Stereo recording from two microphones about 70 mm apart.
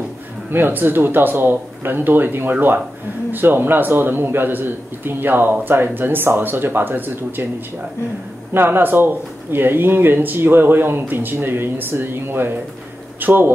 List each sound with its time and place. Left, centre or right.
0.5 s a man's voice: right
8.5 s speech: right